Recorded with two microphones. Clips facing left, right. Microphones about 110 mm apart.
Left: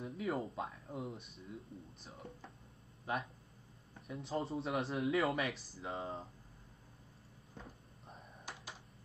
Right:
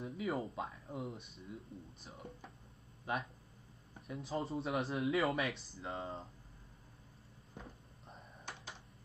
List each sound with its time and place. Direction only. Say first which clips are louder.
0.0 s speech: even; centre (ahead or behind)
7.5 s computer keyboard: right 1 dB; 5° left (ahead or behind)